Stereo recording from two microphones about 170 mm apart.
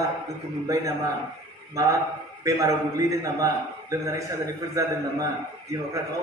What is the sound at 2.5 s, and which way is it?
A man's voice, 20° right (ahead or behind).